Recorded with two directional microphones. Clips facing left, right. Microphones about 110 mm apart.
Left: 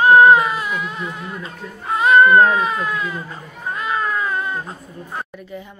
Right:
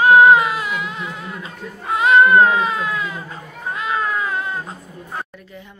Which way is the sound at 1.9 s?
15° right (ahead or behind).